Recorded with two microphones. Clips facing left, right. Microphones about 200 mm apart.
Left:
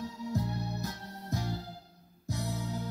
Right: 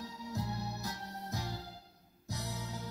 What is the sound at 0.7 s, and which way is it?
Music, 50° left (ahead or behind).